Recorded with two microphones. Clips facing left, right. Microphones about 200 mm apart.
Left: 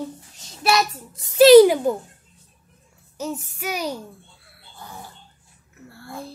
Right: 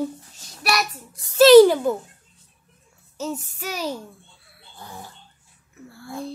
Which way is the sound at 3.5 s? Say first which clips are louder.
Left 2 dB; 10° left (ahead or behind).